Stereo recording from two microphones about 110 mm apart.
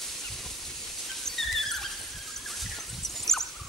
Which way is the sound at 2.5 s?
Centre (ahead or behind).